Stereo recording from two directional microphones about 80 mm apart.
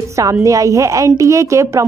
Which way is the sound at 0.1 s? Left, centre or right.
Right.